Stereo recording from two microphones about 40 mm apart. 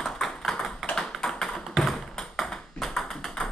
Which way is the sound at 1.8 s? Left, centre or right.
Centre.